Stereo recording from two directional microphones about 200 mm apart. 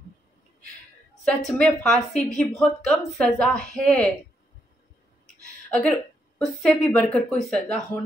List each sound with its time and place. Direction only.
1.2 s a woman's voice: centre (ahead or behind)
5.2 s a woman's voice: 5° left (ahead or behind)